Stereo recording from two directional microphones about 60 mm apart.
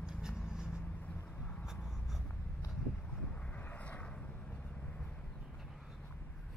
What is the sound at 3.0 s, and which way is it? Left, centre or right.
Vehicle, centre.